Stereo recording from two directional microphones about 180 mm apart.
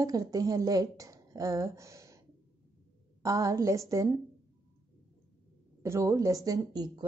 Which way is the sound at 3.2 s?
20° right (ahead or behind).